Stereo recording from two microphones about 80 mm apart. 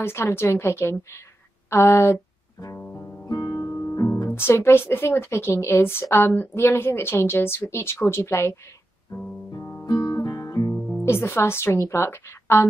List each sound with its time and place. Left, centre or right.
0.0 s a woman's voice: left
3.3 s music: left
4.3 s a woman's voice: left
9.5 s guitar: left
10.0 s guitar: left
10.9 s a woman's voice: left